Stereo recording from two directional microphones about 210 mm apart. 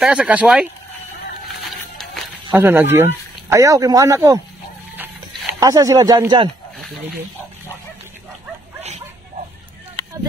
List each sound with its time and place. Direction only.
0.0 s speech: 5° right (ahead or behind)
1.5 s music: centre (ahead or behind)
2.5 s speech: 10° right (ahead or behind)
4.9 s a sound: 10° right (ahead or behind)